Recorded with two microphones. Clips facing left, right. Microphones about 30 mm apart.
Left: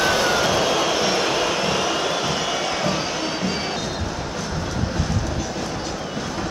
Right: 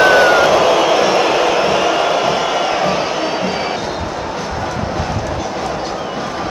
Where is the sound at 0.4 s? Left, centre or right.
Right.